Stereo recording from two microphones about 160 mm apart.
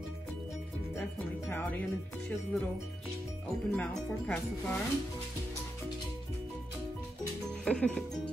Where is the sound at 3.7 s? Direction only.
10° left (ahead or behind).